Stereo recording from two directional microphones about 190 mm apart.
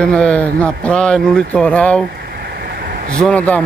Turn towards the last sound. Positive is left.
turn(degrees=5)  # may be behind; listen again after turning